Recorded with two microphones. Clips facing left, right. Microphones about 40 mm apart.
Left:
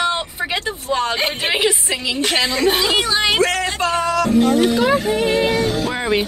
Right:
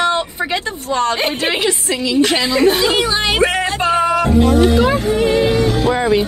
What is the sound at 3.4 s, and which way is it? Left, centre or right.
Music, right.